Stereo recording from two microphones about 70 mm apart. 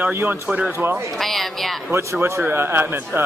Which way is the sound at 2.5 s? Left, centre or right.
Right.